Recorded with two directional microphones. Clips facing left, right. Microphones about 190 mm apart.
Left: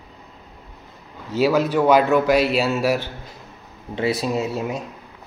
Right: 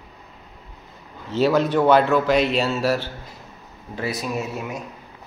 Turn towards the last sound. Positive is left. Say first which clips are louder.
# left 4 dB
turn(degrees=30)  # may be behind; listen again after turning